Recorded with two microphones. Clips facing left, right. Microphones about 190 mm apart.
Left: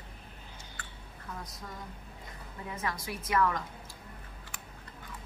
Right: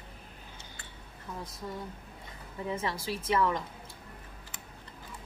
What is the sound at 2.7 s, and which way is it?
Speech, 25° right (ahead or behind).